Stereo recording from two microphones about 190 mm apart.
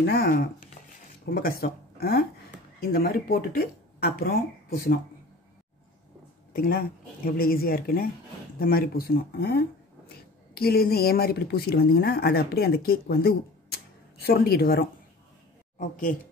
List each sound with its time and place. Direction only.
0.0 s speech: 50° left (ahead or behind)
6.5 s speech: 50° left (ahead or behind)